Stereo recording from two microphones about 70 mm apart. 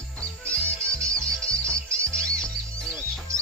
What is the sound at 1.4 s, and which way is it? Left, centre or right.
Music, centre.